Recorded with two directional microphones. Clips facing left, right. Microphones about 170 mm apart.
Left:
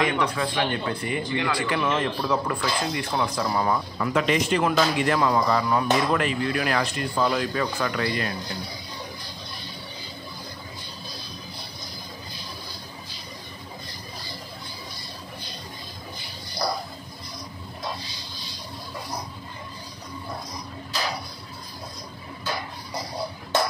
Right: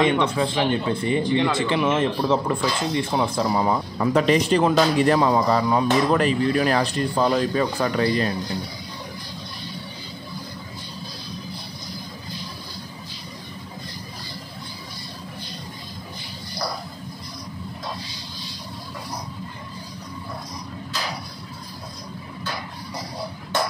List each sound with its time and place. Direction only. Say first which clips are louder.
0.0 s speech: right 4 dB; 25° right (ahead or behind)
4.0 s speech: right 6 dB; 35° right (ahead or behind)